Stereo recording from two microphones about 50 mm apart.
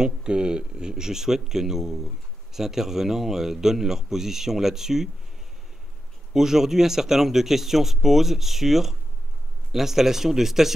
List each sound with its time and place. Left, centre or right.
0.0 s speech: centre
6.3 s speech: centre